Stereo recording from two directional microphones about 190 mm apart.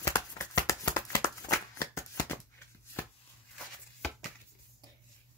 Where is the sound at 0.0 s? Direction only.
20° left (ahead or behind).